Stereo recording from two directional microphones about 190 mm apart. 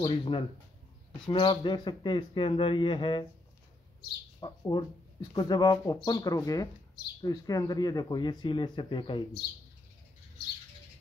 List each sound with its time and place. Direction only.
0.0 s speech: 25° left (ahead or behind)
4.4 s speech: 25° left (ahead or behind)